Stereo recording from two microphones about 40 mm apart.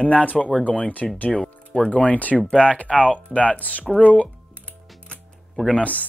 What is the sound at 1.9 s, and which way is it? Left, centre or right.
Speech, left.